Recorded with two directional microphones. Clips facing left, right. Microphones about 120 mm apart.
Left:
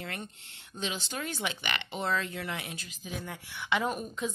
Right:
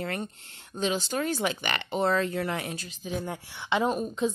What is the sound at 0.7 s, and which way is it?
Speech, 40° right (ahead or behind).